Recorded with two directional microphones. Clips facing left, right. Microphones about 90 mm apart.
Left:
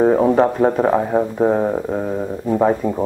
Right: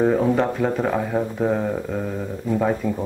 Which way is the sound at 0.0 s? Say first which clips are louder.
Left 5 dB; 35° left (ahead or behind).